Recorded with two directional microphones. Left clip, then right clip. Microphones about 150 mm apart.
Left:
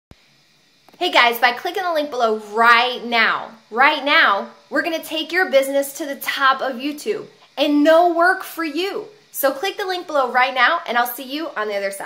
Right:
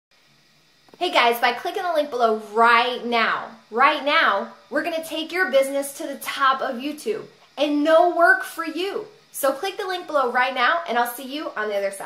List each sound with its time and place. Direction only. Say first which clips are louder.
0.9 s a woman's voice: left 3 dB; 5° left (ahead or behind)